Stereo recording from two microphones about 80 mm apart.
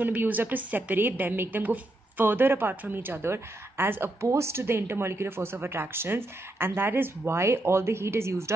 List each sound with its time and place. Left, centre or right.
0.0 s a woman's voice: right